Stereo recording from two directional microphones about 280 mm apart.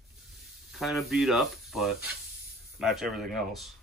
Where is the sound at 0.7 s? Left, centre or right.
Centre.